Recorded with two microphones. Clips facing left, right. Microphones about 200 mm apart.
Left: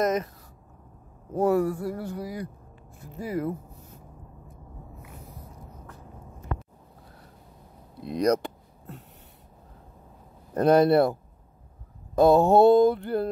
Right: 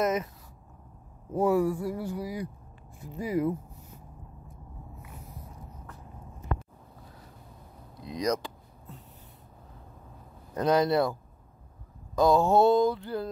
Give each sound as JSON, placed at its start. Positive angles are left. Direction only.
{"t": 1.3, "sound": "speech", "side_deg": -10}
{"t": 8.0, "sound": "a sound", "side_deg": 60}
{"t": 10.5, "sound": "mantra", "side_deg": 55}
{"t": 12.2, "sound": "mantra", "side_deg": 60}